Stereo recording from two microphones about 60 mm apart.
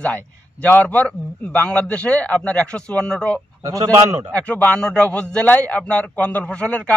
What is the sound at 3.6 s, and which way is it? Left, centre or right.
Speech, right.